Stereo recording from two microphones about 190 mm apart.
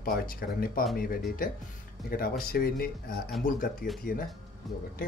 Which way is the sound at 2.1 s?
50° left (ahead or behind).